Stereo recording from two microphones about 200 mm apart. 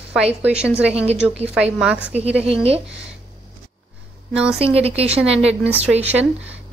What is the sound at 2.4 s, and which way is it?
Speech, 30° right (ahead or behind).